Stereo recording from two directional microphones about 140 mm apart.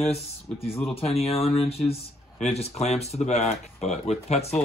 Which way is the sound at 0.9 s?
45° left (ahead or behind).